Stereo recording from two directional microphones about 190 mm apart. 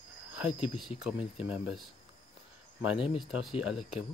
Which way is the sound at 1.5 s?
5° right (ahead or behind).